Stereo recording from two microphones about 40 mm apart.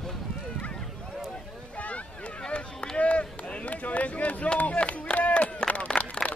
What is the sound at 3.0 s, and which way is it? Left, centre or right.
Run, left.